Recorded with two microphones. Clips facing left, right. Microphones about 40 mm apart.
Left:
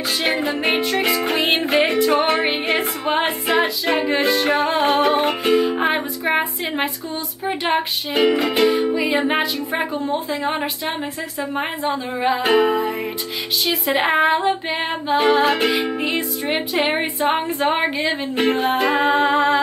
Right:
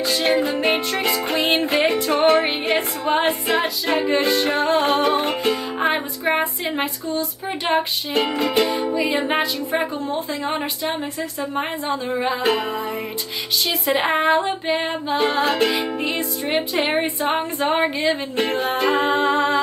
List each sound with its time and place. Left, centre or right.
1.0 s music: centre
6.8 s a sound: centre
7.7 s female singing: centre
8.7 s music: centre
9.7 s female singing: centre
11.9 s music: centre
13.7 s female singing: centre
18.7 s female singing: centre